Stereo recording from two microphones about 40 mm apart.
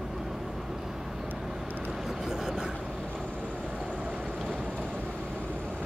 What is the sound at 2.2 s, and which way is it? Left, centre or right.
Vehicle, centre.